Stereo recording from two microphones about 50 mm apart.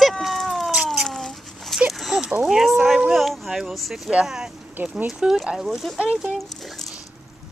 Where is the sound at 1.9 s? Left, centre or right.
Centre.